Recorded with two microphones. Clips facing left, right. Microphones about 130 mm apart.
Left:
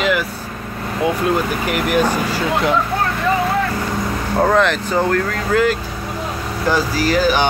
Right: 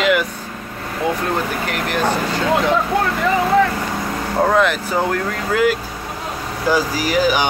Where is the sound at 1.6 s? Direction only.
10° left (ahead or behind).